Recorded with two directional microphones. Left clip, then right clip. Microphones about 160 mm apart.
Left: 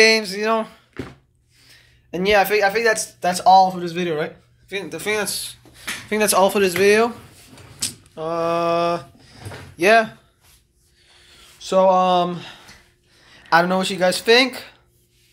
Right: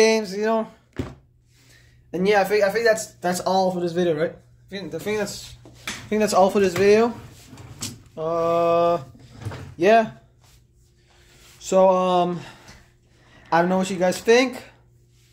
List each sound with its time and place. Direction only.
0.0 s speech: 10° right (ahead or behind)
1.7 s speech: 10° left (ahead or behind); by 3.9 s 30° left (ahead or behind)
4.6 s speech: 10° left (ahead or behind)
6.0 s speech: 10° right (ahead or behind)
7.8 s a sound: 10° right (ahead or behind)
11.6 s speech: 5° right (ahead or behind)